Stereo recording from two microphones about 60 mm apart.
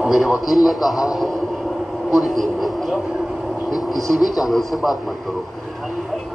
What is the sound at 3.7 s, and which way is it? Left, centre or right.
Speech, left.